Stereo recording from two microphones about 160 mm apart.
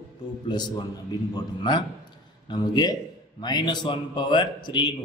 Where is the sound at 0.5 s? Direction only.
25° left (ahead or behind).